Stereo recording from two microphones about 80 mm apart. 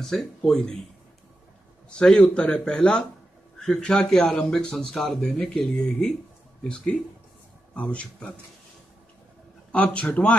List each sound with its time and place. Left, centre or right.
0.0 s speech: centre
1.9 s speech: centre
9.7 s speech: centre